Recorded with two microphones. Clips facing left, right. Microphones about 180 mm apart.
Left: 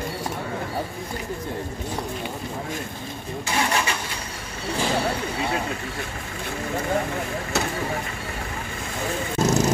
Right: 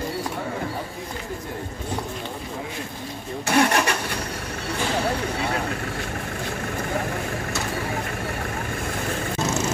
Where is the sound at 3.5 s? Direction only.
60° right (ahead or behind).